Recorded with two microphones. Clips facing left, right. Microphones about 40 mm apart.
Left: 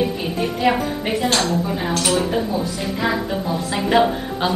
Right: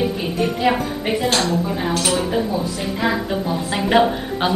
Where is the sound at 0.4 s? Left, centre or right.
Centre.